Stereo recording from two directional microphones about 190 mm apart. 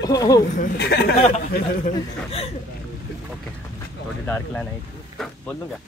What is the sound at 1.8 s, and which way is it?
Speech, 30° left (ahead or behind).